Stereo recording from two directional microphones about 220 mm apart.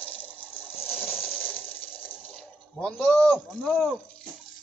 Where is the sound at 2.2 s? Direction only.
Centre (ahead or behind).